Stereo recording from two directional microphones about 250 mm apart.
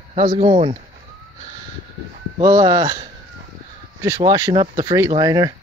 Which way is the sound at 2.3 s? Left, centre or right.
Centre.